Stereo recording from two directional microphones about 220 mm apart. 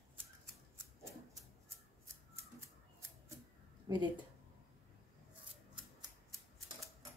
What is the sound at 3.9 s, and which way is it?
Speech, 15° right (ahead or behind).